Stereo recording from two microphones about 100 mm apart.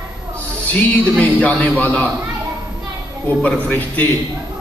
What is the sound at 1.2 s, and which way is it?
Speech, 15° left (ahead or behind).